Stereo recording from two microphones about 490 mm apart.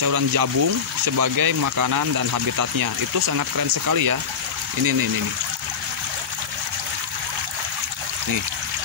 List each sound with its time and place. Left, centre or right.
0.0 s speech: right